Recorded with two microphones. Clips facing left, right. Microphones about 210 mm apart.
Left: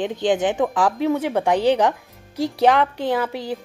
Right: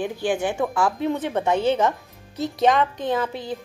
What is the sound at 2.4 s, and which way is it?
Speech, 90° left.